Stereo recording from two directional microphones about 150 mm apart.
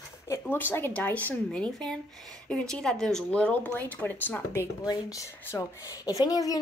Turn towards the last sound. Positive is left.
turn(degrees=25)  # may be behind; listen again after turning